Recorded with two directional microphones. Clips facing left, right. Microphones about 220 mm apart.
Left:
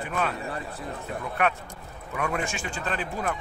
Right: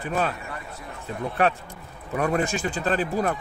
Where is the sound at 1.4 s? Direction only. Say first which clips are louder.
Right 4 dB; 35° right (ahead or behind).